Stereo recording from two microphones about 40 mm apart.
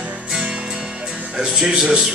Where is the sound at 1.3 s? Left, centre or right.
Centre.